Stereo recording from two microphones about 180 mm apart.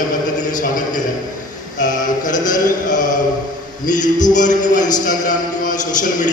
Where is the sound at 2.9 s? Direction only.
45° left (ahead or behind).